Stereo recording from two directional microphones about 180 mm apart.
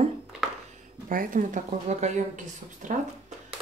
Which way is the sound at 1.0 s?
50° right (ahead or behind).